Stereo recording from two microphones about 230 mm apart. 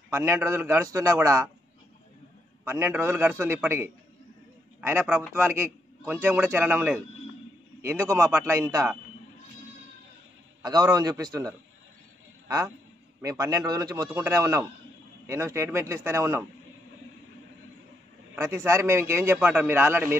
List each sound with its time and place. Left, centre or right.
0.1 s a man's voice: centre
2.6 s a man's voice: centre
10.6 s a man's voice: centre
18.3 s a man's voice: centre